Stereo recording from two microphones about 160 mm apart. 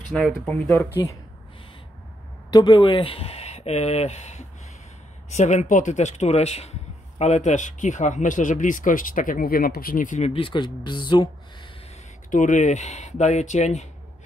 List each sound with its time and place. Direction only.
0.1 s speech: 5° left (ahead or behind)
2.5 s speech: 25° left (ahead or behind)
12.3 s speech: 50° left (ahead or behind)